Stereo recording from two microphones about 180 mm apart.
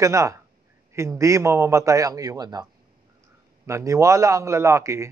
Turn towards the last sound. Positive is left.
turn(degrees=-15)  # may be behind; listen again after turning